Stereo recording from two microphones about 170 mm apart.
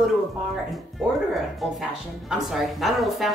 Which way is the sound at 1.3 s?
Centre (ahead or behind).